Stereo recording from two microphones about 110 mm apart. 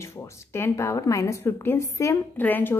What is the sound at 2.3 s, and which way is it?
Speech, 15° left (ahead or behind).